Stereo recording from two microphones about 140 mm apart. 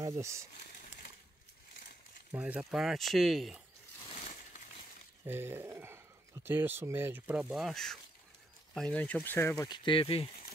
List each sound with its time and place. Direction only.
0.0 s speech: 20° right (ahead or behind)
2.3 s speech: 10° right (ahead or behind)
4.1 s a sound: 45° left (ahead or behind)
5.2 s speech: 15° right (ahead or behind); by 9.7 s 15° left (ahead or behind)
9.7 s speech: 40° left (ahead or behind)